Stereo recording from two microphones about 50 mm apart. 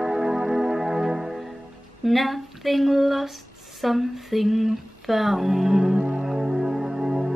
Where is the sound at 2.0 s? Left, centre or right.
Centre.